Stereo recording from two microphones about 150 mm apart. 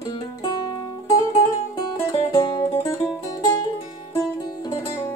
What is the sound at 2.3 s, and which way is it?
Music, 30° left (ahead or behind).